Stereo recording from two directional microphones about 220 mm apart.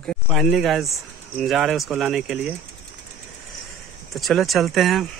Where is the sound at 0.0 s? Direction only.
Centre (ahead or behind).